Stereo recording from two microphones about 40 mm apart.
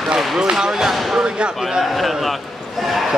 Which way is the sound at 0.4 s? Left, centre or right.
Centre.